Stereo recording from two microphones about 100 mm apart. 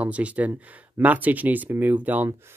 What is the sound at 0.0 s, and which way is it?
Speech, 15° right (ahead or behind).